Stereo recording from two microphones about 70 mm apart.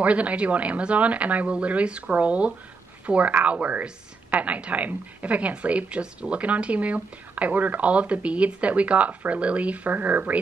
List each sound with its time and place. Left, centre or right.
0.0 s a woman's voice: centre